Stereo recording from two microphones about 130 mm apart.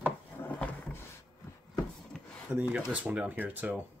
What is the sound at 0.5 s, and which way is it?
Drawer open or close, 10° left (ahead or behind).